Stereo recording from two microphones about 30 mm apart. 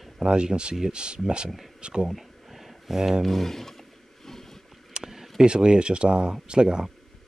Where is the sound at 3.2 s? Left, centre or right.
Centre.